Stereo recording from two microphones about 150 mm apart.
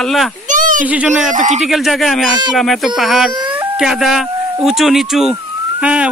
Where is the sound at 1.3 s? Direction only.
60° right (ahead or behind).